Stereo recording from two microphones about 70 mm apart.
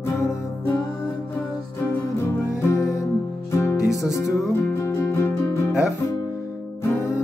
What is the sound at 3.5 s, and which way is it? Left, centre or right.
Music, left.